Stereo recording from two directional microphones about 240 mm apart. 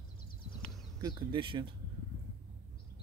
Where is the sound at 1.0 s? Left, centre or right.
Centre.